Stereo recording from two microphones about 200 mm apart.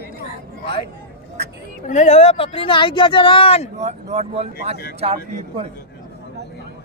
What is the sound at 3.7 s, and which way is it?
Speech, 35° right (ahead or behind).